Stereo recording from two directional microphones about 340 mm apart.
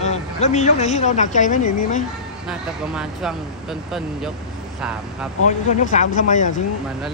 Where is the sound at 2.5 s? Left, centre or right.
Centre.